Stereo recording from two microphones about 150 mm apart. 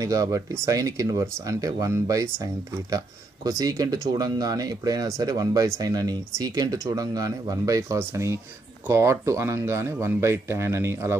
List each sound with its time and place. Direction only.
0.0 s speech: 25° right (ahead or behind)